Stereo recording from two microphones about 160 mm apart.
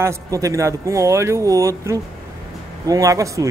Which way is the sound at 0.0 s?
20° right (ahead or behind).